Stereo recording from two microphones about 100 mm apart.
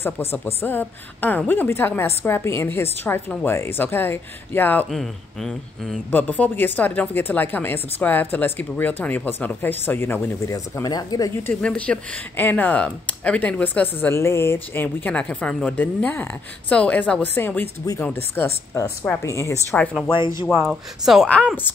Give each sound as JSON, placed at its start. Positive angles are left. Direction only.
{"t": 0.0, "sound": "speech", "side_deg": 25}
{"t": 4.8, "sound": "speech", "side_deg": 0}
{"t": 6.1, "sound": "speech", "side_deg": 15}
{"t": 10.5, "sound": "speech", "side_deg": 40}
{"t": 11.4, "sound": "speech", "side_deg": 10}
{"t": 20.6, "sound": "speech", "side_deg": 0}